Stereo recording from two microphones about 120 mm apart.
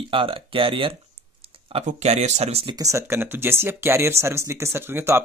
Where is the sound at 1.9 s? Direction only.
65° right (ahead or behind).